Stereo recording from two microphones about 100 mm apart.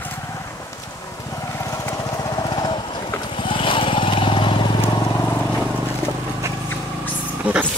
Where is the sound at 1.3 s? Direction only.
30° left (ahead or behind); by 3.0 s 50° left (ahead or behind).